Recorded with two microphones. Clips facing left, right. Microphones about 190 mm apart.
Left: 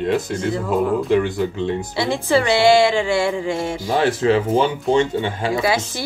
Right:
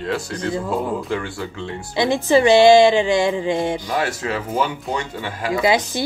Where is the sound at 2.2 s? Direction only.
20° right (ahead or behind).